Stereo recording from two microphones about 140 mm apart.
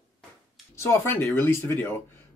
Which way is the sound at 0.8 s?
15° left (ahead or behind).